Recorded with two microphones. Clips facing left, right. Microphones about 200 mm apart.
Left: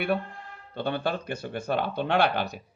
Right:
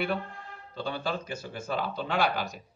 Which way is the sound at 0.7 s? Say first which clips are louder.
Left 4 dB; 60° left (ahead or behind).